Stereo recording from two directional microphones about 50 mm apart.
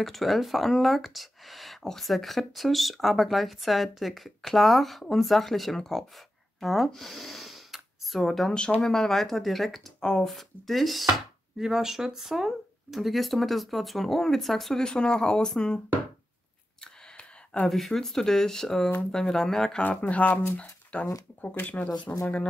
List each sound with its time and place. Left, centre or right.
0.0 s speech: centre
8.5 s speech: centre
10.3 s speech: centre
16.8 s a sound: left
17.6 s speech: centre
19.8 s speech: left
22.1 s speech: left